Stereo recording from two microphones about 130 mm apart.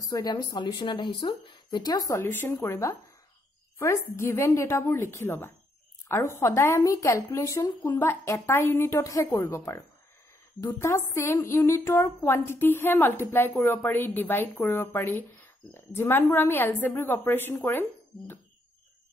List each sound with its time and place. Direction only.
0.1 s a woman's voice: 30° left (ahead or behind)